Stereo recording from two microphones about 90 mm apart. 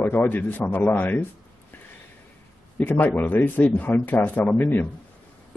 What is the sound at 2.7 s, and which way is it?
Speech, 20° left (ahead or behind).